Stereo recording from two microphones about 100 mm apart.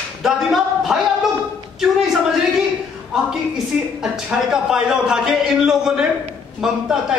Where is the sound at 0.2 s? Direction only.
Centre (ahead or behind).